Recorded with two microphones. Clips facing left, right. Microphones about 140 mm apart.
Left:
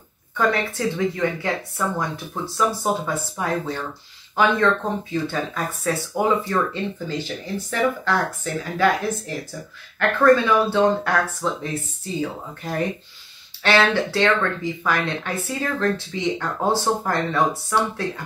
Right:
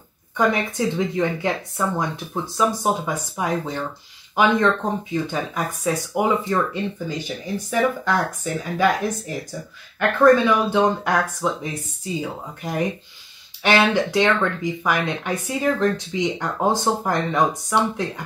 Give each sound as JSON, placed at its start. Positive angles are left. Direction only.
{"t": 0.4, "sound": "speech", "side_deg": -15}
{"t": 2.5, "sound": "speech", "side_deg": -15}